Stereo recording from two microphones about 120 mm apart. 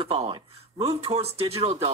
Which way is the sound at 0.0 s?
55° right (ahead or behind).